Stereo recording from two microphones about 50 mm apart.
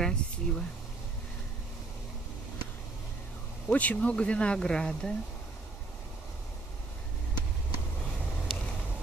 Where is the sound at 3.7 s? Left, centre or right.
Left; by 5.1 s centre.